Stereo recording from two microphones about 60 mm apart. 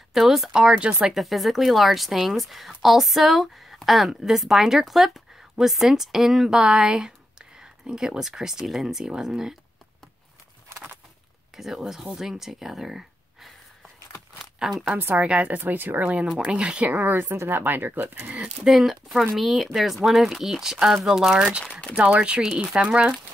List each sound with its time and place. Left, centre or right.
0.1 s a woman's voice: centre
1.0 s a woman's voice: centre
11.5 s speech: centre
14.4 s a sound: centre
15.1 s speech: right
15.6 s speech: right
16.5 s a woman's voice: centre
16.8 s speech: right
18.3 s a woman's voice: centre
18.7 s a woman's voice: centre